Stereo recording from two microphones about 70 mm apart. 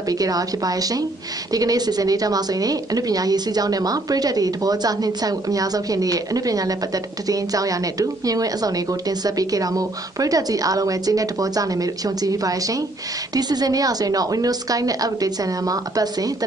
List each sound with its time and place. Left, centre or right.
0.1 s a woman's voice: right
13.3 s a woman's voice: right